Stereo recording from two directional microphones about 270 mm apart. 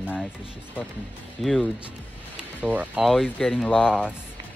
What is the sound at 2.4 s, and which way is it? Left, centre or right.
Speech, centre.